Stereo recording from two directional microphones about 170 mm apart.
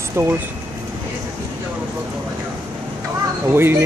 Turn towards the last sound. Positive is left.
turn(degrees=-15)  # may be behind; listen again after turning